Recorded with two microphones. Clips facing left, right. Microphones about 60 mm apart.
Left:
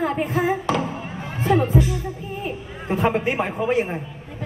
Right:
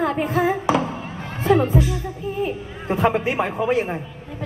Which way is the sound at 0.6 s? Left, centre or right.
Centre.